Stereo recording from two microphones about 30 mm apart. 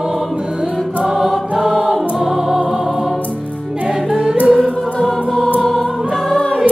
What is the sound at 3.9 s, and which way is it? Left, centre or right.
Music, centre.